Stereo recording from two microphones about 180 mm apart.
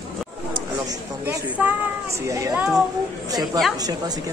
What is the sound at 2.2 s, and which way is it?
Speech, 15° right (ahead or behind).